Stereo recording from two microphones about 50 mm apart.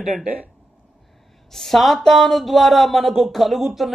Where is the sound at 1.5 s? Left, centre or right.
Centre.